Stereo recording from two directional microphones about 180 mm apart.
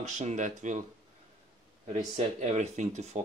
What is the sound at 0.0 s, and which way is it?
Speech, 40° right (ahead or behind).